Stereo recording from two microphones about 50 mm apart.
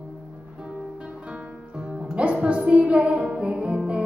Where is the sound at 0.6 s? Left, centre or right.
Centre.